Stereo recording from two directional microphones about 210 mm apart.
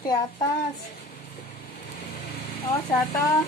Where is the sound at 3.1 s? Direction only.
15° left (ahead or behind).